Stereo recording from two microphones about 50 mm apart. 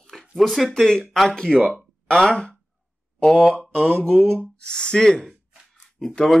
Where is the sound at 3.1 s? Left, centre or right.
Centre.